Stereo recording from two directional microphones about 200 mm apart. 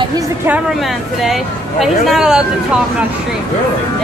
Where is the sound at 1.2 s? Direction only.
Centre (ahead or behind).